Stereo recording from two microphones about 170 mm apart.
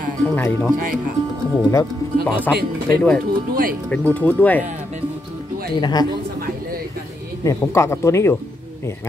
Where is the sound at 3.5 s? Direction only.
60° right (ahead or behind).